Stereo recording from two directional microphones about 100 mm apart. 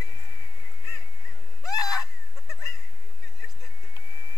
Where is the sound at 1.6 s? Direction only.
35° left (ahead or behind).